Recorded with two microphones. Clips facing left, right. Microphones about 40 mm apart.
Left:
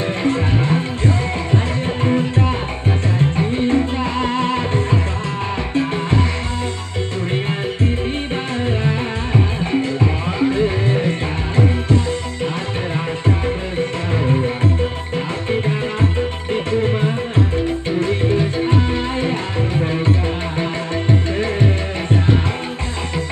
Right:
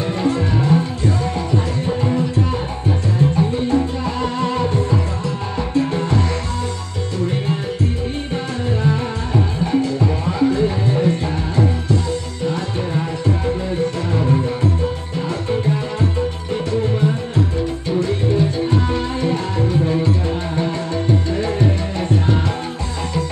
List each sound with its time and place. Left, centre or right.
0.0 s music: left
8.6 s music: left
14.1 s music: left